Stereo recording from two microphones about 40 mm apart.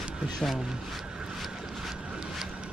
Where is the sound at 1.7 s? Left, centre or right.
Centre.